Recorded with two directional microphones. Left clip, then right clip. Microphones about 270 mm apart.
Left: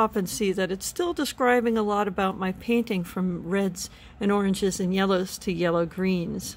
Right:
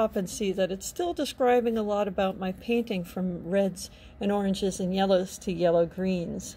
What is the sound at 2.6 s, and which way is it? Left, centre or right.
Speech, left.